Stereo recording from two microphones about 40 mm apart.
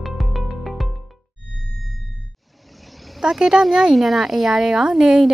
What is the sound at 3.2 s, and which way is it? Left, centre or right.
A woman's voice, centre.